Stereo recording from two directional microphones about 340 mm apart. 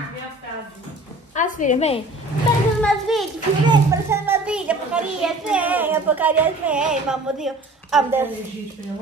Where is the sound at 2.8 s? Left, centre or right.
Centre.